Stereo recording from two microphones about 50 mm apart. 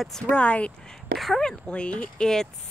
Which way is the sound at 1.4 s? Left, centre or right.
Left.